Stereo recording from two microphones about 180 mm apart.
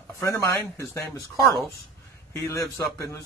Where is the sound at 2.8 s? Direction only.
15° left (ahead or behind).